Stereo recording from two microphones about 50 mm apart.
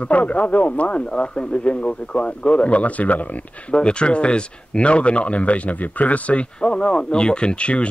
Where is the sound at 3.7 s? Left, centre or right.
Centre.